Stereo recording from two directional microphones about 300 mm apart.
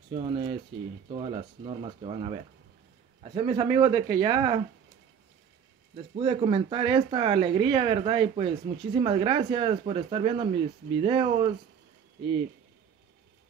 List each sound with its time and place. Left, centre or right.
0.1 s speech: centre
5.9 s speech: centre